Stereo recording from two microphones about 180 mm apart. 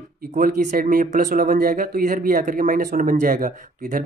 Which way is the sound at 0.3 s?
45° right (ahead or behind).